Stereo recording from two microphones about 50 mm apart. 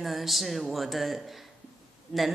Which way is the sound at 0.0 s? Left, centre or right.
Centre.